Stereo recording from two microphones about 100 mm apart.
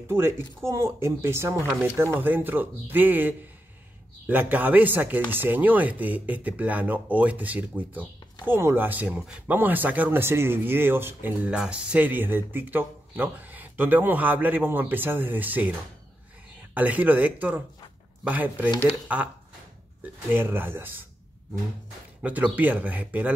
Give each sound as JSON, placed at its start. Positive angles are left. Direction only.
{"t": 0.7, "sound": "speech", "side_deg": -25}
{"t": 11.5, "sound": "speech", "side_deg": -10}
{"t": 16.7, "sound": "speech", "side_deg": -15}
{"t": 22.2, "sound": "speech", "side_deg": -15}